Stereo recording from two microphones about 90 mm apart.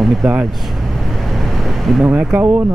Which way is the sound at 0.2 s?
15° right (ahead or behind).